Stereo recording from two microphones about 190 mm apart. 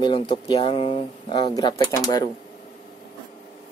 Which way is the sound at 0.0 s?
25° left (ahead or behind).